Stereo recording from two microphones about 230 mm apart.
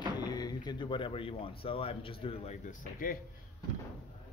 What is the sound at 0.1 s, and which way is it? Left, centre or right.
Door, centre.